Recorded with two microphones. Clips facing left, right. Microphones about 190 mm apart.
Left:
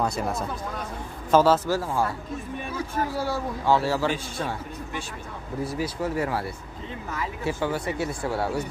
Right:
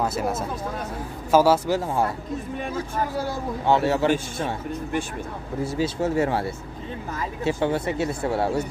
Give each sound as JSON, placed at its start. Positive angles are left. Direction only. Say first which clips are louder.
{"t": 0.0, "sound": "a man's voice", "louder": "right 2 dB", "side_deg": -5}
{"t": 1.8, "sound": "speech", "louder": "right 2 dB", "side_deg": -20}
{"t": 3.6, "sound": "speech", "louder": "right 3 dB", "side_deg": -20}
{"t": 5.6, "sound": "speech", "louder": "right 4 dB", "side_deg": -25}